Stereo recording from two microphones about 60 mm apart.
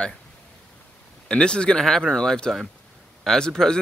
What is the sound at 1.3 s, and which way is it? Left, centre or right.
Speech, centre.